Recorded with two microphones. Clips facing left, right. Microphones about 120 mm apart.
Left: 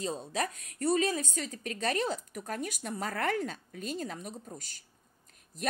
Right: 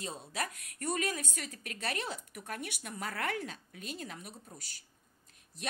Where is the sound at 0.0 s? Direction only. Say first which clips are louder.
Left 6 dB; 35° left (ahead or behind).